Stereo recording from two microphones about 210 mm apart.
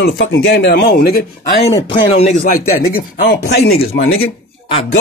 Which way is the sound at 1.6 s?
30° left (ahead or behind).